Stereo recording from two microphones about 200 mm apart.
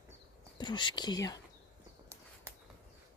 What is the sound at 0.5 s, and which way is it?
Speech, 25° left (ahead or behind).